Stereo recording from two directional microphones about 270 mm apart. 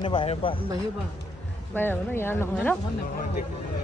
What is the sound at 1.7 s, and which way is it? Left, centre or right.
Speech, centre.